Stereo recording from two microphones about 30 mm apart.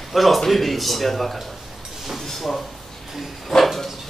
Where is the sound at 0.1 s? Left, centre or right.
Centre.